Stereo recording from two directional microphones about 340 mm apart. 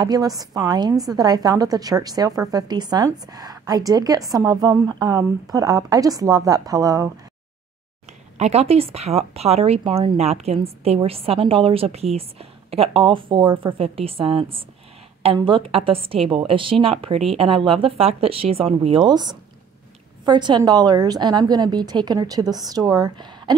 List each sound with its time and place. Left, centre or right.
0.0 s speech: centre
8.4 s speech: centre